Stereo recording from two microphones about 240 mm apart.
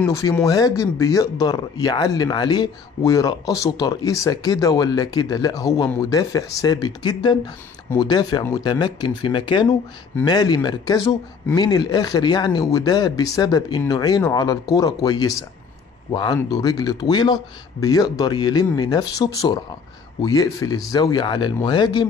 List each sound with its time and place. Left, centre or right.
0.0 s speech: centre